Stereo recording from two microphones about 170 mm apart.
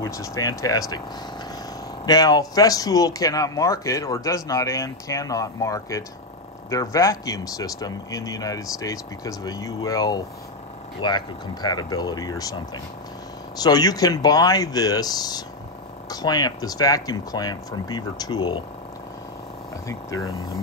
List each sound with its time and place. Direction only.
0.0 s speech: 20° left (ahead or behind)
2.0 s speech: 20° left (ahead or behind)
19.9 s speech: 20° left (ahead or behind)